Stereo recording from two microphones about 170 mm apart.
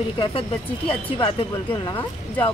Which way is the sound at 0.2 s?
35° left (ahead or behind).